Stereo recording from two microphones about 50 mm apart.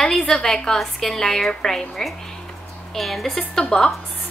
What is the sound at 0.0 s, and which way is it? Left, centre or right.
A woman's voice, centre.